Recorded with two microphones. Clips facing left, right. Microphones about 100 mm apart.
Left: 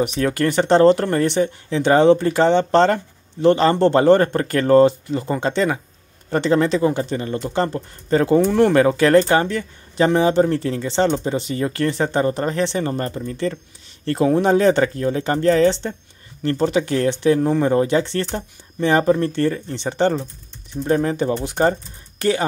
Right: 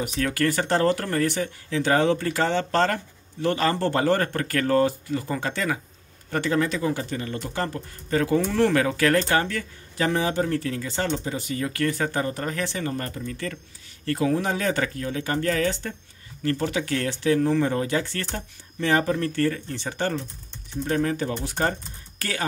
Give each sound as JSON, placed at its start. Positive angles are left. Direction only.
{"t": 0.0, "sound": "speech", "side_deg": 25}